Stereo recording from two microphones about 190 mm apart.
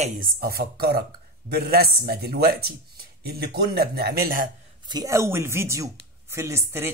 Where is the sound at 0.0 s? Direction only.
50° right (ahead or behind).